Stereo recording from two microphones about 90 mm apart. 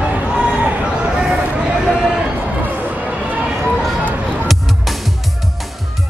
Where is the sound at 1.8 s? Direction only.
Centre (ahead or behind).